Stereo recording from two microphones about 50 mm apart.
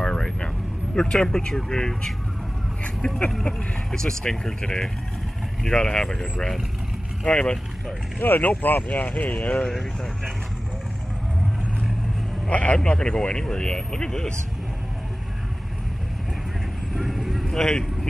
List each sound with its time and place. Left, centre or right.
0.0 s vehicle: centre
0.9 s speech: centre
3.4 s speech: centre
8.2 s speech: left
9.7 s speech: centre
12.4 s speech: left
16.9 s vehicle: centre
17.6 s speech: centre